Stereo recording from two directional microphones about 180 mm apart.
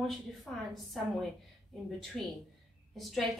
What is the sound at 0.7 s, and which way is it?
A woman's voice, centre (ahead or behind).